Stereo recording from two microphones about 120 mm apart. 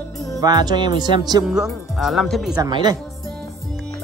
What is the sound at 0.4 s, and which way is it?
Speech, 35° right (ahead or behind).